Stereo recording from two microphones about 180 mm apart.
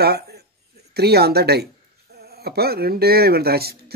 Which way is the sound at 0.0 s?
60° right (ahead or behind).